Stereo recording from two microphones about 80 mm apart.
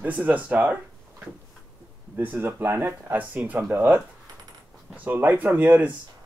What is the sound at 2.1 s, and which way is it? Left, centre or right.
Speech, right.